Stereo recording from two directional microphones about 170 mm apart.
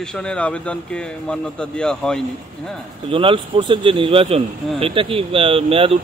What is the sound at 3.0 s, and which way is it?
Speech, 30° right (ahead or behind).